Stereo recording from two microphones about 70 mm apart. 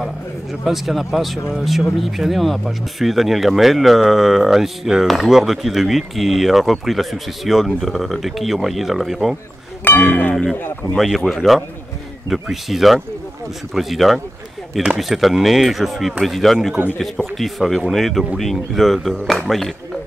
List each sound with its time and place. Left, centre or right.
0.0 s a man's voice: centre
9.8 s speech: left
11.0 s speech: centre